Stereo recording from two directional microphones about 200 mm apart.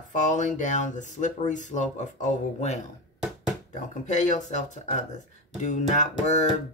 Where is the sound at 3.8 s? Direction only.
35° left (ahead or behind).